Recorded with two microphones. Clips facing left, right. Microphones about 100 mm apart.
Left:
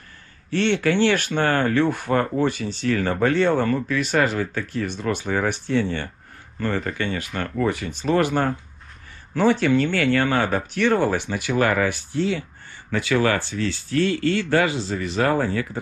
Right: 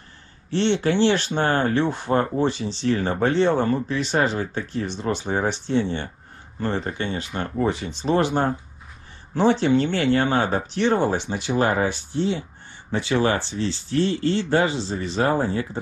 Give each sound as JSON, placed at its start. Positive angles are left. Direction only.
{"t": 0.5, "sound": "speech", "side_deg": -20}